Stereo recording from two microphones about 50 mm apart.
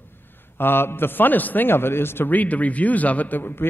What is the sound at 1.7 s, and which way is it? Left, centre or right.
Speech, left.